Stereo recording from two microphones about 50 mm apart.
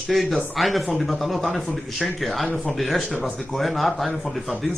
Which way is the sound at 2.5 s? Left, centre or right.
Left.